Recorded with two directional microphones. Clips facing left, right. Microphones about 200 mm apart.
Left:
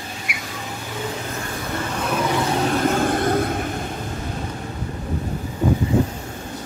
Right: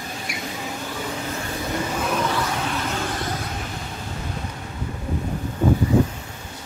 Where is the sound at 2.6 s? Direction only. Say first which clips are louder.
Left 7 dB; 45° left (ahead or behind).